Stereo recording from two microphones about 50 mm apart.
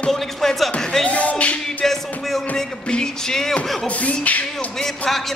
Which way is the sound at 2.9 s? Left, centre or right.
Centre.